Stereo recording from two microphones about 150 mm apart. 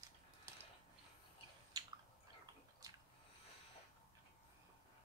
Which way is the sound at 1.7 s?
25° right (ahead or behind).